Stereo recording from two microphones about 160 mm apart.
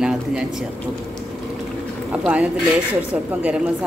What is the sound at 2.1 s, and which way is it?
A man's voice, 10° right (ahead or behind).